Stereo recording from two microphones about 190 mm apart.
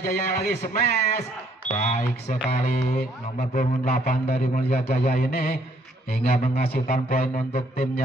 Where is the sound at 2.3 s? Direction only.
45° left (ahead or behind).